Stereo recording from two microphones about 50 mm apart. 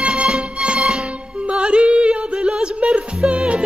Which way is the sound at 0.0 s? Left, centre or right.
Right.